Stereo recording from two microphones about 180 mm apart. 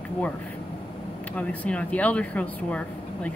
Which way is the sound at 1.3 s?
10° left (ahead or behind).